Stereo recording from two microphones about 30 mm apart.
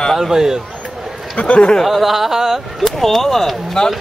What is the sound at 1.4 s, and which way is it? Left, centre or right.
Speech, left.